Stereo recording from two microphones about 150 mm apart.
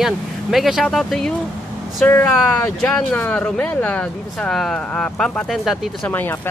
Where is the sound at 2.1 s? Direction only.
15° left (ahead or behind).